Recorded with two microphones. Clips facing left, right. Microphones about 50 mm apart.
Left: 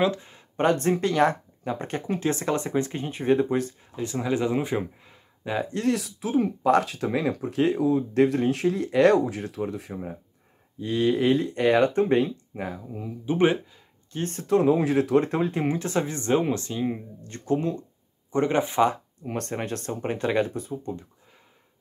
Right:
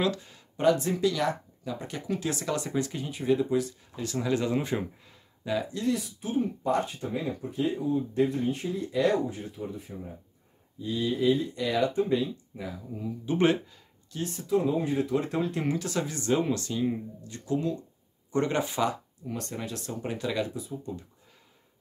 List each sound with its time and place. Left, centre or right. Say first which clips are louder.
0.0 s a sound: left 4 dB; left
0.6 s speech: left 2 dB; left
3.9 s speech: left 2 dB; left
5.7 s speech: left 4 dB; left
10.8 s speech: left 5 dB; left
12.9 s speech: left 1 dB; left
14.1 s speech: left 4 dB; left
14.5 s speech: left 6 dB; left
15.1 s speech: left 6 dB; left
17.2 s speech: left 6 dB; left
18.3 s speech: left 4 dB; left
19.2 s speech: left 5 dB; left